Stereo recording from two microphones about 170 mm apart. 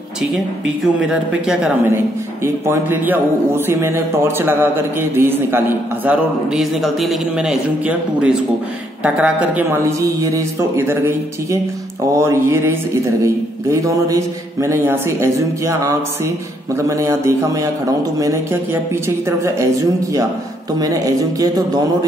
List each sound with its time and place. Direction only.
1.0 s speech: 5° right (ahead or behind)
2.4 s a man's voice: 15° right (ahead or behind)